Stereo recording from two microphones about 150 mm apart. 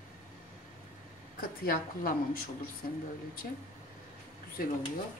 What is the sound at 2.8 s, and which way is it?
Speech, 65° left (ahead or behind).